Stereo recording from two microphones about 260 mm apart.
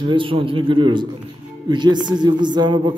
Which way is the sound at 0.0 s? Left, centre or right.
Centre.